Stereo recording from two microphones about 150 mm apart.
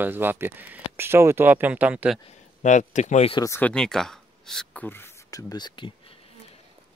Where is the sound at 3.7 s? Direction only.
5° left (ahead or behind); by 6.2 s 35° left (ahead or behind).